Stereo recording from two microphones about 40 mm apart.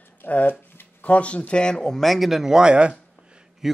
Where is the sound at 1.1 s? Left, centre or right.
Left.